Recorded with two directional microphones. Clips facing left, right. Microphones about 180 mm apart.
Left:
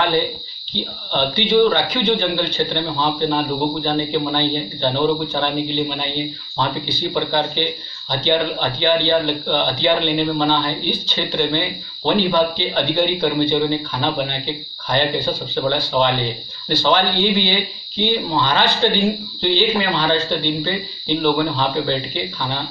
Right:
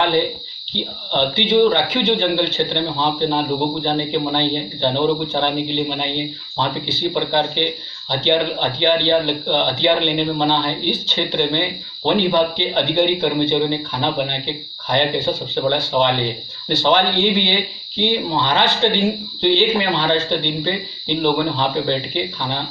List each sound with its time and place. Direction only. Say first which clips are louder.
1.3 s speech: even; 25° right (ahead or behind)